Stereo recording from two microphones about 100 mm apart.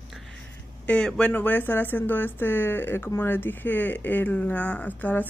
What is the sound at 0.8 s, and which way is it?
Speech, 10° left (ahead or behind).